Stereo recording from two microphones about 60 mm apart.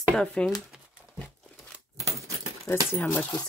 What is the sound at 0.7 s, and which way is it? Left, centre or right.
Crumpling, centre.